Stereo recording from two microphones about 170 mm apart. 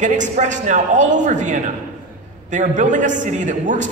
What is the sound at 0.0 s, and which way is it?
A man's voice, 45° right (ahead or behind).